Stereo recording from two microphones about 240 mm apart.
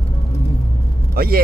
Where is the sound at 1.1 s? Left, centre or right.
Right.